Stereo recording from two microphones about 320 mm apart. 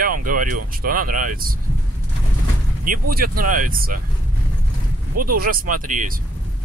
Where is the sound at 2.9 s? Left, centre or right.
Right.